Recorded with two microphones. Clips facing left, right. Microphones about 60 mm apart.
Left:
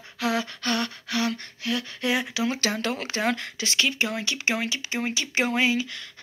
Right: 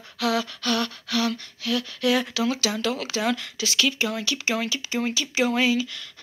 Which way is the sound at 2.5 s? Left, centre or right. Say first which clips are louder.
Right 1 dB; left.